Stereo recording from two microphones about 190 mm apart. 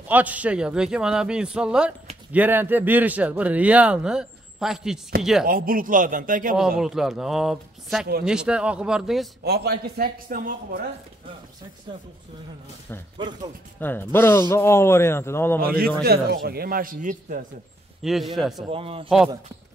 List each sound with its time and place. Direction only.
0.1 s a man's voice: 10° right (ahead or behind)
5.5 s a man's voice: 45° right (ahead or behind)
6.8 s a man's voice: centre (ahead or behind)
9.4 s a man's voice: 60° right (ahead or behind)
13.2 s a man's voice: 25° right (ahead or behind)
13.7 s a man's voice: 10° left (ahead or behind)
15.6 s a man's voice: 50° right (ahead or behind)
18.0 s a man's voice: centre (ahead or behind)
18.6 s a man's voice: 30° right (ahead or behind)
19.0 s a man's voice: centre (ahead or behind)